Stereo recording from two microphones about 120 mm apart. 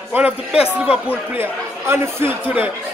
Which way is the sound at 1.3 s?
20° right (ahead or behind).